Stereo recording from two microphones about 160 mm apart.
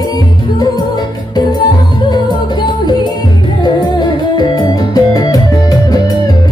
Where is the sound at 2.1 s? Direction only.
25° left (ahead or behind).